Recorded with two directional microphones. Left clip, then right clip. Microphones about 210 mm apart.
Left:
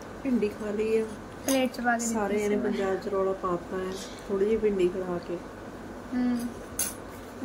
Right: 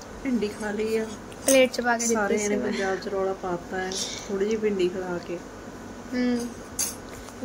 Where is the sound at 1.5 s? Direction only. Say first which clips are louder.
Right 6 dB; 35° right (ahead or behind).